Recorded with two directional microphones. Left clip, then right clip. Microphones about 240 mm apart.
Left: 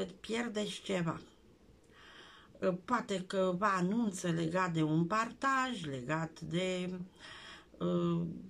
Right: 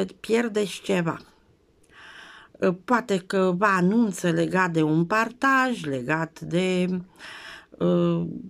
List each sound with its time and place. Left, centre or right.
0.0 s speech: right